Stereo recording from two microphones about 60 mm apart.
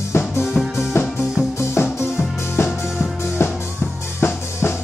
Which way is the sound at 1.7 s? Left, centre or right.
Left.